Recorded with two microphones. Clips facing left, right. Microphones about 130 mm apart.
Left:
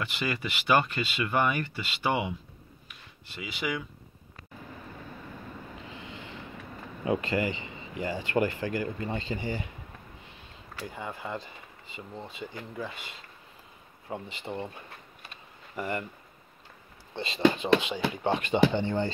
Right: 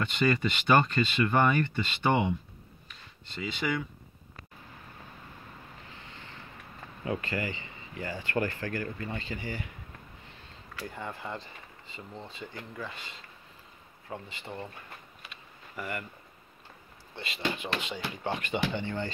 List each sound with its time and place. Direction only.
0.0 s speech: 10° left (ahead or behind)
7.1 s speech: 20° left (ahead or behind)
10.9 s speech: 5° left (ahead or behind)
14.0 s speech: 15° left (ahead or behind)
15.7 s speech: 25° left (ahead or behind)
17.1 s speech: 25° left (ahead or behind)